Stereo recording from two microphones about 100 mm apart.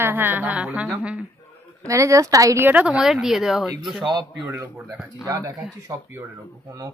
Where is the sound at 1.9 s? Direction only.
30° right (ahead or behind).